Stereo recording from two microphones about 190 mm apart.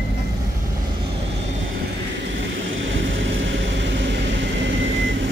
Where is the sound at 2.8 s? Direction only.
90° right; by 5.2 s 75° right (ahead or behind).